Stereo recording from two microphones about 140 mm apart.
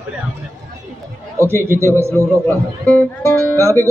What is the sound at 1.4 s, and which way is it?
A man's voice, 20° right (ahead or behind).